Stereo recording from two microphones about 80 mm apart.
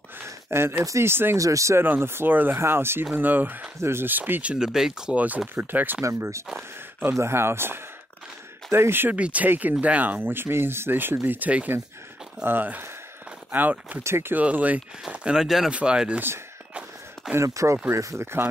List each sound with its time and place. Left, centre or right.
0.2 s speech: right
1.4 s speech: right; by 5.1 s centre
5.1 s speech: centre
6.0 s speech: right
9.1 s speech: centre
14.0 s speech: right
14.4 s speech: centre
17.4 s speech: right